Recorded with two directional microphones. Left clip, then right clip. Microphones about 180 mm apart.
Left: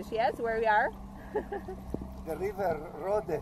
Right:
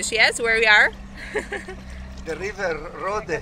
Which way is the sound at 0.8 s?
20° right (ahead or behind).